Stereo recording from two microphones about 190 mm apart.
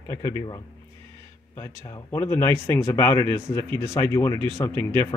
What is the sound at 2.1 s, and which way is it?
Speech, 15° left (ahead or behind).